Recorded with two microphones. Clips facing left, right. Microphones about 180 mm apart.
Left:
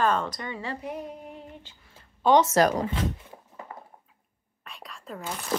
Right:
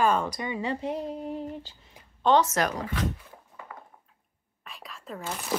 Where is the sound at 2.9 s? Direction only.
30° left (ahead or behind).